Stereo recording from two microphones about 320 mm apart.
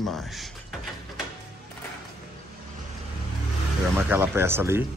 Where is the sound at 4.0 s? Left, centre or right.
Centre.